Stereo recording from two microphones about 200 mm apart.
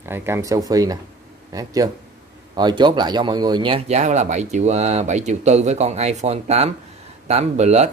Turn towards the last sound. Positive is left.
turn(degrees=-35)  # may be behind; listen again after turning